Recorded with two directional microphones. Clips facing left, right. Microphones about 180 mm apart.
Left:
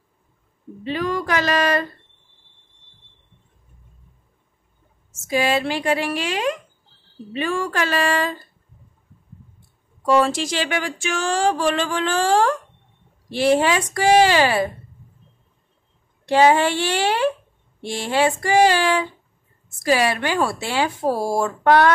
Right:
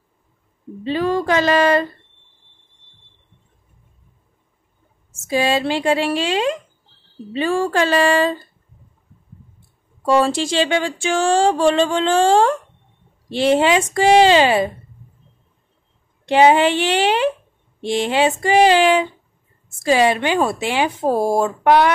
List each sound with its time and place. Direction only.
0.8 s music: 30° right (ahead or behind)
5.3 s music: 30° right (ahead or behind)
10.0 s music: 30° right (ahead or behind)
16.3 s music: 20° right (ahead or behind)